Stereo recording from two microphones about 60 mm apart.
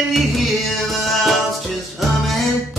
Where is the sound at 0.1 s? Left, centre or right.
Centre.